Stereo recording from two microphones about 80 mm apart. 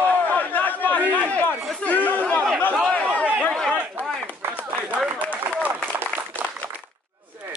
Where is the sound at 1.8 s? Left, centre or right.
Centre.